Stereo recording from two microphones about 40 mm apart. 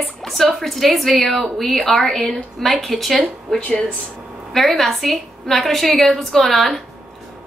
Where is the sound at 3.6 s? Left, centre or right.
Left.